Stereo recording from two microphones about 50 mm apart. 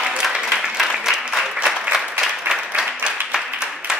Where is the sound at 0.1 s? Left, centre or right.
Centre.